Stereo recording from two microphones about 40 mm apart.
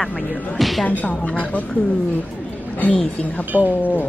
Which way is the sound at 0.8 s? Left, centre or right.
Left.